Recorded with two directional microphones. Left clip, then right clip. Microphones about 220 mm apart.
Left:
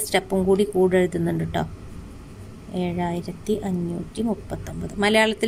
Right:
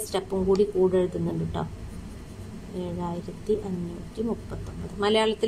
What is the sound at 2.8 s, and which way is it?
Speech, 25° left (ahead or behind).